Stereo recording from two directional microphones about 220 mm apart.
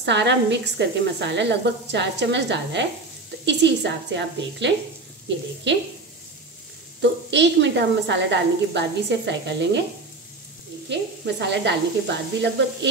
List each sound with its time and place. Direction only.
0.0 s a woman's voice: 50° right (ahead or behind)
7.0 s a woman's voice: 55° right (ahead or behind)
10.9 s a woman's voice: 50° right (ahead or behind)